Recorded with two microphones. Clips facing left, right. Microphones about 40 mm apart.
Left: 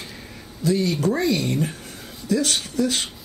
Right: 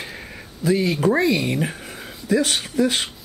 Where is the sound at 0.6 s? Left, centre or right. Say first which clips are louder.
Right 2 dB; centre.